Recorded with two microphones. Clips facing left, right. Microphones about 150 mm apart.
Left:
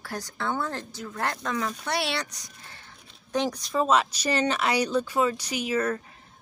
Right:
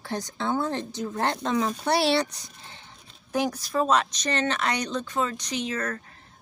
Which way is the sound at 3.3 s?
5° right (ahead or behind).